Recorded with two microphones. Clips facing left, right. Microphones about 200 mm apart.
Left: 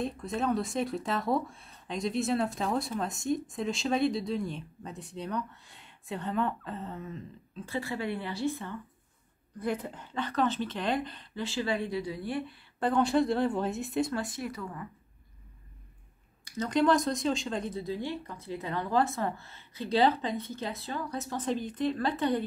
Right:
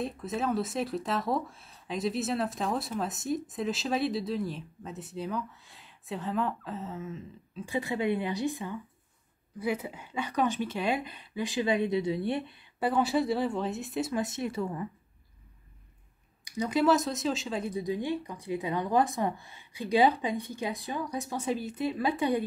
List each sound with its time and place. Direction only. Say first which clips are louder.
0.0 s speech: even; centre (ahead or behind)
7.6 s speech: right 4 dB; 15° right (ahead or behind)
12.7 s speech: left 1 dB; 5° right (ahead or behind)
14.1 s speech: right 3 dB; 20° right (ahead or behind)
16.4 s speech: right 1 dB; 10° right (ahead or behind)